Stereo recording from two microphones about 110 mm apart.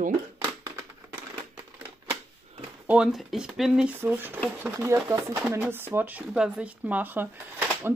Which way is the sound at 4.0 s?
20° right (ahead or behind).